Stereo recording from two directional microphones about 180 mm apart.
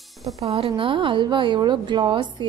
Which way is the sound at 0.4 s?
35° right (ahead or behind).